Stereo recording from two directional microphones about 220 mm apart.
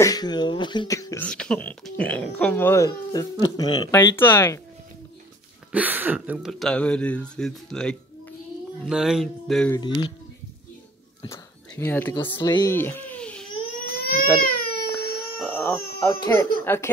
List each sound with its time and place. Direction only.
0.0 s speech: 20° left (ahead or behind)
5.7 s speech: 5° right (ahead or behind)
9.8 s speech: 20° left (ahead or behind)
11.2 s a child's voice: 10° left (ahead or behind)
13.9 s crying: 45° left (ahead or behind)
15.4 s howl: 10° left (ahead or behind)
16.3 s speech: 10° left (ahead or behind)